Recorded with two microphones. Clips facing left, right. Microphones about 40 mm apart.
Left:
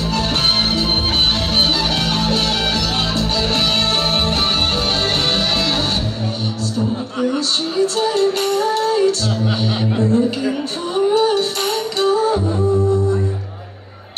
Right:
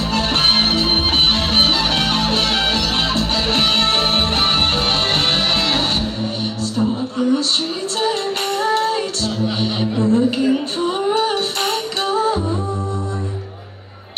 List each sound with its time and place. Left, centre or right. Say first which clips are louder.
0.1 s music: right 2 dB; right
7.8 s music: left 4 dB; right